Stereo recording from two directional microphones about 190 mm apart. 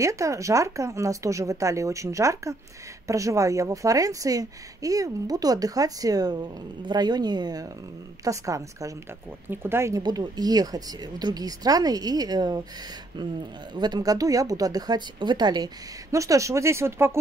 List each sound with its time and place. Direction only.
0.0 s a woman's voice: 15° right (ahead or behind)
13.7 s a woman's voice: 20° right (ahead or behind)